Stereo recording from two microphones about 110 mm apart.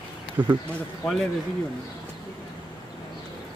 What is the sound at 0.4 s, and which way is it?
Speech, 15° right (ahead or behind).